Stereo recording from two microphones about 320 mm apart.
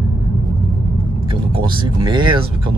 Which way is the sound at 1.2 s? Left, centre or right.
Centre.